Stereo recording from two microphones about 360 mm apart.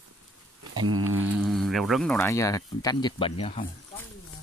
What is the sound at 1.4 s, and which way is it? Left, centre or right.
Speech, centre.